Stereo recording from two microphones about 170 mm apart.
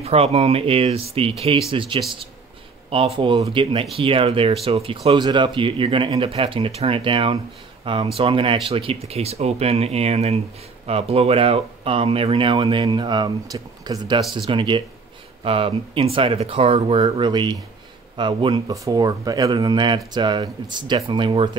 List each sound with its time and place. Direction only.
0.0 s speech: 35° right (ahead or behind)